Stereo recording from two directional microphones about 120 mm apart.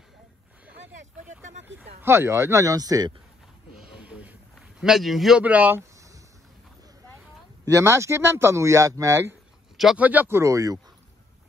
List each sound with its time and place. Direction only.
2.0 s speech: 20° right (ahead or behind)
3.7 s a sound: 10° right (ahead or behind)
4.6 s speech: 5° right (ahead or behind)
5.4 s a sound: 15° right (ahead or behind)
7.6 s speech: 25° right (ahead or behind)
9.9 s speech: 15° right (ahead or behind)